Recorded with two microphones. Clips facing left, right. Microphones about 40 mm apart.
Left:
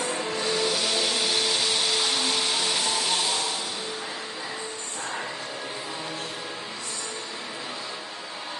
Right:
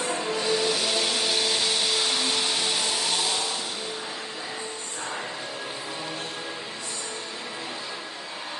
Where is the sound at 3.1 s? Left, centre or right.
Centre.